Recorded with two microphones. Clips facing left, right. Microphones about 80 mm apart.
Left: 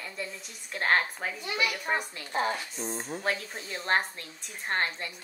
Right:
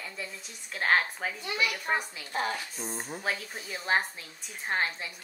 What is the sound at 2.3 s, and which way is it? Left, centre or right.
Speech, left.